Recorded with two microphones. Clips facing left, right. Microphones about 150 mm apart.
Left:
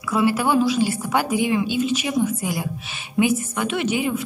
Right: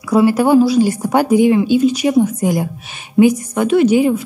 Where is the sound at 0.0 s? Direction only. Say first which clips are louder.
Right 8 dB; 35° right (ahead or behind).